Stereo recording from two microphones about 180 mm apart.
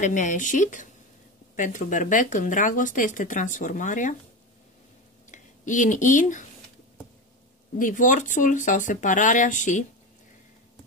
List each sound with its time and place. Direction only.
0.0 s speech: 45° left (ahead or behind)
5.3 s speech: 45° left (ahead or behind)
7.8 s speech: 45° left (ahead or behind)